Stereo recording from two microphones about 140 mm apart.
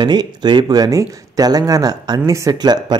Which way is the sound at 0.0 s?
30° right (ahead or behind).